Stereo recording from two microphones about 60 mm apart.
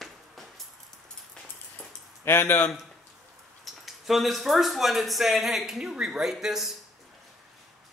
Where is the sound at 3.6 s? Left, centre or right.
Centre.